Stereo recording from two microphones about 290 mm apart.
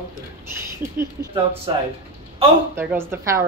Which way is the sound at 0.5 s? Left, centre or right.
Centre.